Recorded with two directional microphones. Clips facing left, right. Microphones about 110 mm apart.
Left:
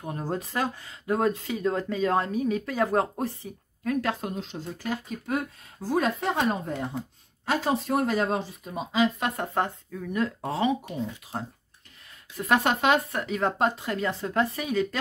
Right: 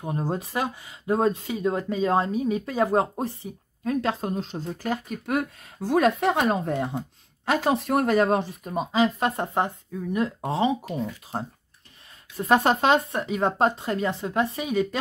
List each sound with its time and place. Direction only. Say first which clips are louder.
0.0 s speech: right 3 dB; 20° right (ahead or behind)
4.4 s speech: right 4 dB; 40° right (ahead or behind); by 5.4 s 55° right (ahead or behind)
5.9 s speech: right 5 dB; 70° right (ahead or behind)
8.9 s speech: right 2 dB; 40° right (ahead or behind)
9.4 s speech: right 2 dB; 15° right (ahead or behind)